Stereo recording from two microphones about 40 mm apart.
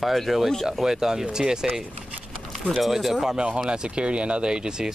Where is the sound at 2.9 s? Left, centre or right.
Centre.